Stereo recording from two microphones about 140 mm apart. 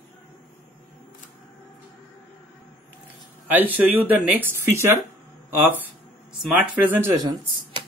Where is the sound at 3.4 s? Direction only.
10° right (ahead or behind).